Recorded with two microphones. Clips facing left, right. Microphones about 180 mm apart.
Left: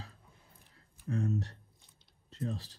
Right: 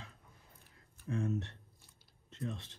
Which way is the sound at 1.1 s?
35° left (ahead or behind).